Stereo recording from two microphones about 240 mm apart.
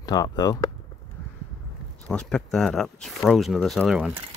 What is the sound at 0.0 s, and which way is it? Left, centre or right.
Speech, centre.